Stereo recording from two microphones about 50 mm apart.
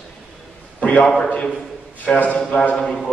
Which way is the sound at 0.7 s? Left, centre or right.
Left.